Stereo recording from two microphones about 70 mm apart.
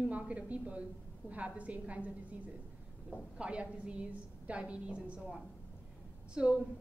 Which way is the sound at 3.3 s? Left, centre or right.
Centre.